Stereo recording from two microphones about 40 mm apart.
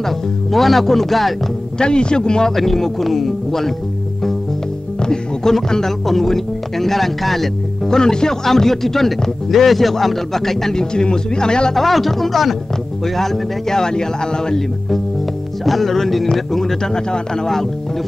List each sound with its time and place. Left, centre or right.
0.0 s speech: centre
1.8 s a man's voice: left
2.5 s speech: centre
5.0 s speech: centre
8.0 s speech: centre
11.7 s speech: centre
15.6 s speech: centre